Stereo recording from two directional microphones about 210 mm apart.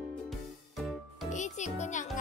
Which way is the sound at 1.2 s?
35° left (ahead or behind).